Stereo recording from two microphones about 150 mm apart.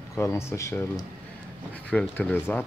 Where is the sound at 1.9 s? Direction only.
10° left (ahead or behind).